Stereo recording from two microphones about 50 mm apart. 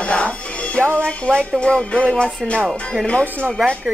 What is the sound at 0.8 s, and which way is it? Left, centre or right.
Speech, right.